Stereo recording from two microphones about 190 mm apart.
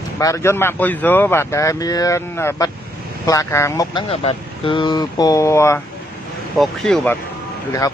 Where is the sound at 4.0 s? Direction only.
30° left (ahead or behind).